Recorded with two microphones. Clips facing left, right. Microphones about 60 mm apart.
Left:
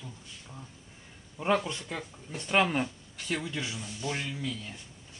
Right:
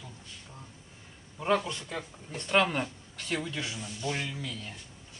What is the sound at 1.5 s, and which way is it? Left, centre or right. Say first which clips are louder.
Speech: even; centre.